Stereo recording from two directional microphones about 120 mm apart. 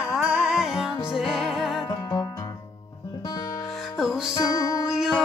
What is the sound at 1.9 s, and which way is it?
Music, 30° left (ahead or behind).